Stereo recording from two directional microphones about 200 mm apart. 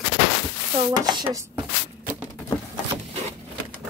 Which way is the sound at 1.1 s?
20° right (ahead or behind).